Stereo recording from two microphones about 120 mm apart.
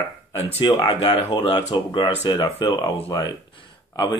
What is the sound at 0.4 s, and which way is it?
Speech, 60° left (ahead or behind).